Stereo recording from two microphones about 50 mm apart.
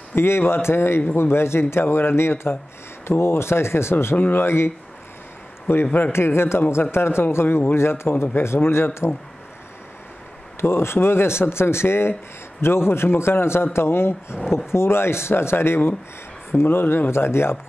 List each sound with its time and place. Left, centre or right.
0.1 s speech: left
4.0 s speech: left
6.1 s speech: left
10.6 s speech: left
14.3 s speech: centre
14.7 s speech: left